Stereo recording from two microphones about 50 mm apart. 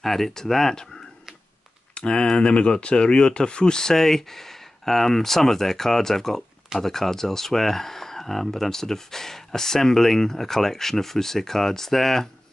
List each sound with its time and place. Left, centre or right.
0.0 s speech: centre
2.0 s speech: centre